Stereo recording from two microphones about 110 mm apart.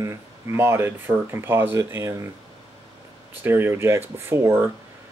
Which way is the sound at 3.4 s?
20° right (ahead or behind).